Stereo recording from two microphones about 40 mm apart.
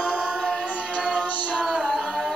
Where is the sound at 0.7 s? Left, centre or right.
Right.